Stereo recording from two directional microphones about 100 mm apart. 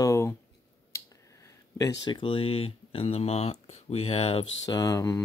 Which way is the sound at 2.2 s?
65° left (ahead or behind).